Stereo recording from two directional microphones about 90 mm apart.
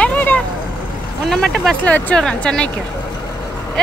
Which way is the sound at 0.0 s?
15° left (ahead or behind).